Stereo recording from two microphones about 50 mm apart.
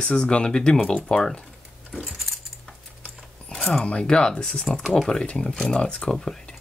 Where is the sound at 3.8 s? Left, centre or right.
Centre.